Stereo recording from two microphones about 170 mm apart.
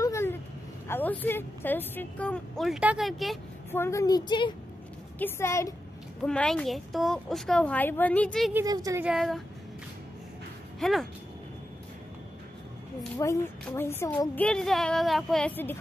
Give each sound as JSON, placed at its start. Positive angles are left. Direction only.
{"t": 0.0, "sound": "vehicle", "side_deg": 15}
{"t": 0.8, "sound": "a woman's voice", "side_deg": 10}
{"t": 3.7, "sound": "a woman's voice", "side_deg": 15}
{"t": 5.2, "sound": "a woman's voice", "side_deg": 15}
{"t": 6.2, "sound": "a woman's voice", "side_deg": 5}
{"t": 8.5, "sound": "speech", "side_deg": -20}
{"t": 9.0, "sound": "a woman's voice", "side_deg": 0}
{"t": 10.8, "sound": "speech", "side_deg": 0}
{"t": 13.2, "sound": "a woman's voice", "side_deg": 15}
{"t": 14.4, "sound": "a woman's voice", "side_deg": 5}